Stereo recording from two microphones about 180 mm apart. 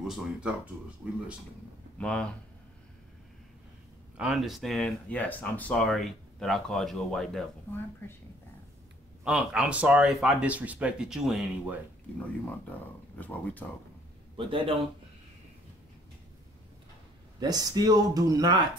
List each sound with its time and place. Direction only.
0.0 s speech: centre (ahead or behind)
2.0 s speech: 5° left (ahead or behind)
4.2 s speech: centre (ahead or behind)
9.2 s speech: 5° right (ahead or behind)
13.2 s speech: 10° left (ahead or behind)
14.3 s a man's voice: 30° right (ahead or behind)
17.4 s speech: 20° right (ahead or behind)